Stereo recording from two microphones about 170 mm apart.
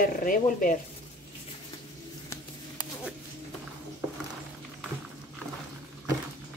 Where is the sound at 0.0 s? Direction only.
55° left (ahead or behind).